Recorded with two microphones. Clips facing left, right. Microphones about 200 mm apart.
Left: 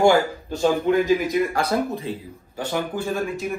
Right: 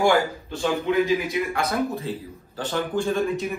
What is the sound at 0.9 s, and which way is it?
Speech, 45° left (ahead or behind).